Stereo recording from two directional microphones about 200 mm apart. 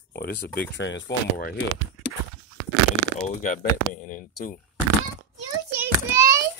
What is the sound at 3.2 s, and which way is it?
Speech, 40° left (ahead or behind).